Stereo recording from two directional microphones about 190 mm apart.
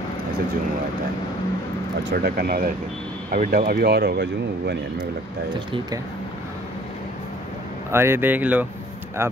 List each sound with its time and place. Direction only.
2.2 s speech: 50° right (ahead or behind)
7.9 s speech: 15° right (ahead or behind)